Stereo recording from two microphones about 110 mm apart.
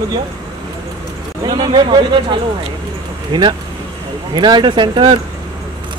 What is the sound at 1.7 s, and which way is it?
Speech, 45° right (ahead or behind).